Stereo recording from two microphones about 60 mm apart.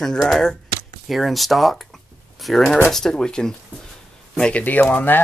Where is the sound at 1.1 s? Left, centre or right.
Centre.